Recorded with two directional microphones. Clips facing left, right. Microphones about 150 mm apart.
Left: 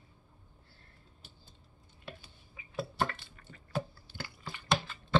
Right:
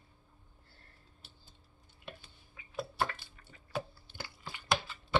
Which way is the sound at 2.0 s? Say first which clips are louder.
Left 1 dB; 5° left (ahead or behind).